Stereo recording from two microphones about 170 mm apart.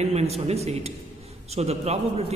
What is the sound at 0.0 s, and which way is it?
Speech, 40° right (ahead or behind).